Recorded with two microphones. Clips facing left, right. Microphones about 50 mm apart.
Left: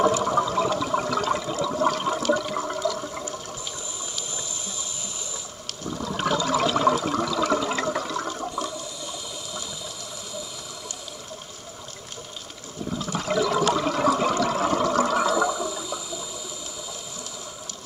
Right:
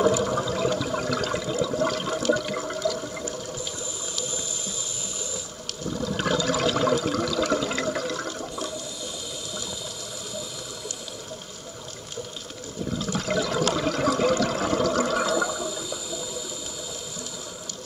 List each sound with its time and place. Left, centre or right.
0.2 s toilet flush: left
2.7 s toilet flush: centre
5.9 s toilet flush: left
12.9 s toilet flush: left
15.1 s toilet flush: centre